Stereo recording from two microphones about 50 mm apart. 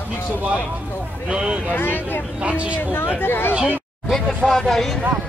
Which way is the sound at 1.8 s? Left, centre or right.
Left.